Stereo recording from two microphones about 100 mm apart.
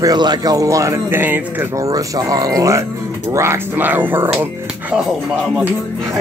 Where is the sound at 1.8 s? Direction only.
35° right (ahead or behind).